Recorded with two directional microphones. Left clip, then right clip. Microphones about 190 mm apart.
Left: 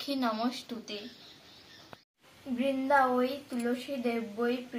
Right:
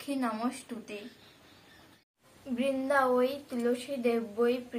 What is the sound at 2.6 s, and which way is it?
A woman's voice, 30° right (ahead or behind).